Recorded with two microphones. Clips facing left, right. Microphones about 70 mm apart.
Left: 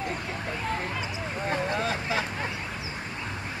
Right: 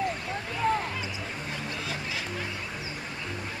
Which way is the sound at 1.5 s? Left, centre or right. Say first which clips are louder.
Left 10 dB; left.